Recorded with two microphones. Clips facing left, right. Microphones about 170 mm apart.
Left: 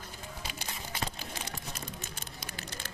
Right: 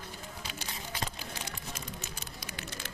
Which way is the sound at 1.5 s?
45° left (ahead or behind).